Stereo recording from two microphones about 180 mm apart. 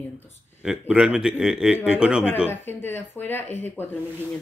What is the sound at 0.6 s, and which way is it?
Speech, 5° right (ahead or behind).